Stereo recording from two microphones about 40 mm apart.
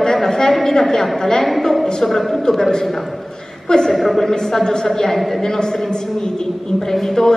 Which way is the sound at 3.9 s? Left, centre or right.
Centre.